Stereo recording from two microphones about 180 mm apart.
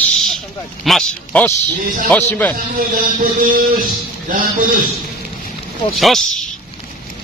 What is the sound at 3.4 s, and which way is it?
Speech, 50° right (ahead or behind).